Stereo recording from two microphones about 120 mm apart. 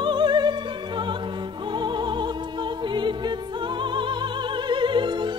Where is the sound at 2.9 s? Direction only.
40° right (ahead or behind).